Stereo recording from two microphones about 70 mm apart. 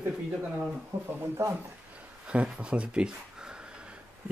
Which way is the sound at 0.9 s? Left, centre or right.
Right.